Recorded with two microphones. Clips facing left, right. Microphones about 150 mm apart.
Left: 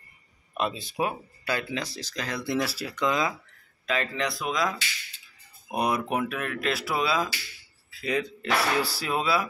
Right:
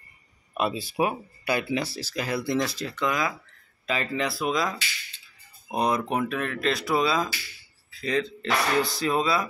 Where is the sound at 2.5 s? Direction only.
10° left (ahead or behind).